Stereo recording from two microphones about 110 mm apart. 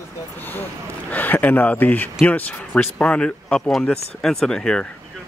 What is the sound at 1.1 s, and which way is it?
Speech, 15° left (ahead or behind).